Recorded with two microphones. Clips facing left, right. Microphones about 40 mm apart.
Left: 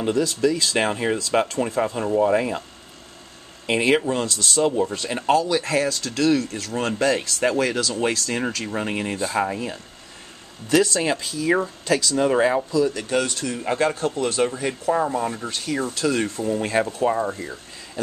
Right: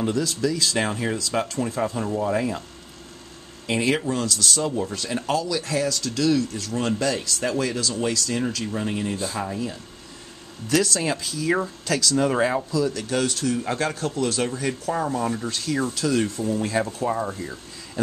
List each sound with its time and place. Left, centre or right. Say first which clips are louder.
0.0 s speech: left 3 dB; left
3.6 s speech: left 3 dB; left
8.7 s speech: left 1 dB; left
10.7 s speech: left 3 dB; left
16.0 s speech: left 1 dB; left
17.1 s speech: left 2 dB; centre